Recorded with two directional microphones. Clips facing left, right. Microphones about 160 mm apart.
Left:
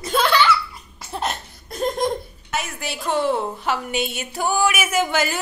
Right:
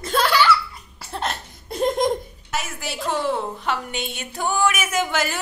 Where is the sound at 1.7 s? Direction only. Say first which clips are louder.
Right 2 dB; 20° right (ahead or behind).